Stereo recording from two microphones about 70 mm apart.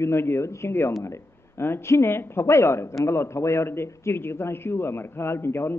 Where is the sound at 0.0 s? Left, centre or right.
Left.